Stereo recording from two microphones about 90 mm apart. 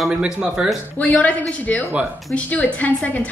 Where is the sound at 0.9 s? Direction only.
15° left (ahead or behind).